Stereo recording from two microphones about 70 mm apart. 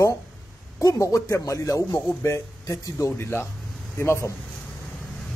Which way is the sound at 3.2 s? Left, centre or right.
Left.